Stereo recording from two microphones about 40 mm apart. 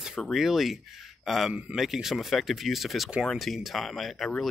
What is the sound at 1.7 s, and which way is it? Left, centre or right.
Speech, centre.